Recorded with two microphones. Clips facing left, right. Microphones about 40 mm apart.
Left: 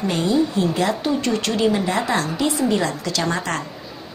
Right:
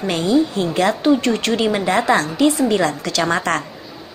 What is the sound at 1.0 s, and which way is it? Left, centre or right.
Speech, right.